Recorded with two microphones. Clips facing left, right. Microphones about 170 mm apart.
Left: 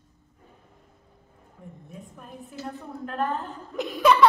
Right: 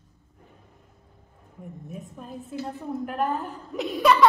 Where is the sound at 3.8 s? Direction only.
Centre (ahead or behind).